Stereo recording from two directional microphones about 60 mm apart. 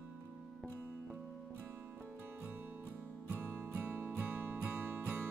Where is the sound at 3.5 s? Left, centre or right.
Right.